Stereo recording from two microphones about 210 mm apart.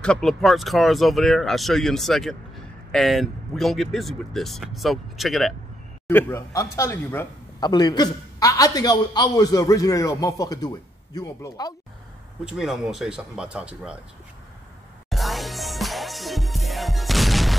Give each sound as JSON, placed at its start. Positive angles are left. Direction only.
{"t": 0.0, "sound": "a man's voice", "side_deg": 5}
{"t": 12.4, "sound": "speech", "side_deg": -5}
{"t": 15.0, "sound": "music", "side_deg": 0}